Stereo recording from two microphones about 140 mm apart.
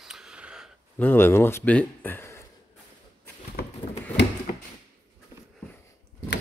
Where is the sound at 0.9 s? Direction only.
15° left (ahead or behind).